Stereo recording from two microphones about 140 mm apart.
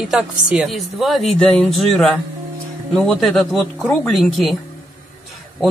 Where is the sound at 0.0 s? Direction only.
5° right (ahead or behind).